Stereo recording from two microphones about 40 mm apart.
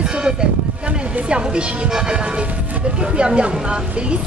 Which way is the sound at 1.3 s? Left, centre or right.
Right.